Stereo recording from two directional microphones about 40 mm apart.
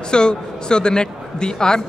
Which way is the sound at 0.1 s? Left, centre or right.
Left.